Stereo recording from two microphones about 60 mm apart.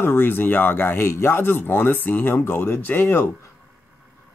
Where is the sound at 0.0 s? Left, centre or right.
Left.